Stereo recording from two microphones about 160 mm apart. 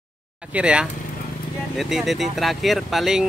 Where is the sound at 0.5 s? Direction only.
5° right (ahead or behind).